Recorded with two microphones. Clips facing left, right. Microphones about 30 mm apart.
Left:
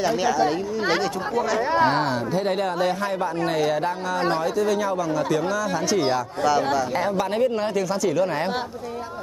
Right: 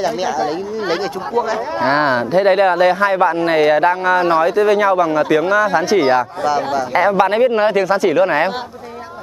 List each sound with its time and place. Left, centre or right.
0.0 s speech: centre
1.9 s speech: right
6.4 s speech: centre
6.9 s speech: right